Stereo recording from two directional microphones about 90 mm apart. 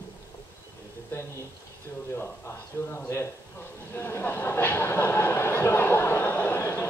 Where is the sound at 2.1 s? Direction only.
25° left (ahead or behind).